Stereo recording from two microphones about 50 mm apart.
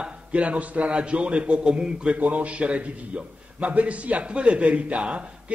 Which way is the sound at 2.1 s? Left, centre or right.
Right.